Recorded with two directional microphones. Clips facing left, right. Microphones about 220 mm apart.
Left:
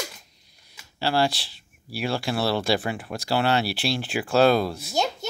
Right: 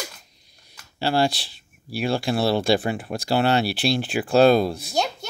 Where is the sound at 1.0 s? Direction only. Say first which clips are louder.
Right 2 dB; 20° right (ahead or behind).